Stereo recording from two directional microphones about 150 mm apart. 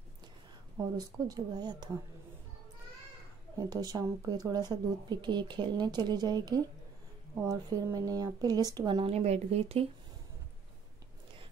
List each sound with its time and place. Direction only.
0.9 s speech: 25° right (ahead or behind)
3.5 s speech: 25° right (ahead or behind)
9.0 s speech: 45° right (ahead or behind)